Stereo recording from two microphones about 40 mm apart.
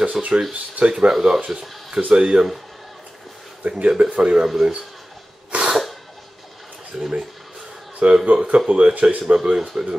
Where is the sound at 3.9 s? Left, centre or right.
Right.